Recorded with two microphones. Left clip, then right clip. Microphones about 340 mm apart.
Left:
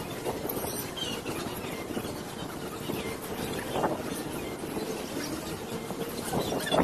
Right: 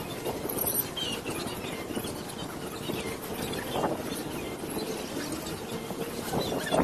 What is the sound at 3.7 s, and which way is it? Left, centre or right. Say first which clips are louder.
Wind noise: left 1 dB; centre.